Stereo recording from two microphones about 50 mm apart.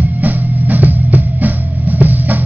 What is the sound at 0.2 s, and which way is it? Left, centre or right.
Music, right.